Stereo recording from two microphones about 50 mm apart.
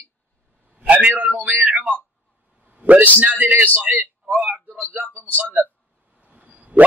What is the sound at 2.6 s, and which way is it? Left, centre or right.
A man's voice, right.